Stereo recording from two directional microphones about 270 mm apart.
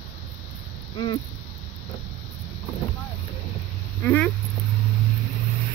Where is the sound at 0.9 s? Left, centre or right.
Centre.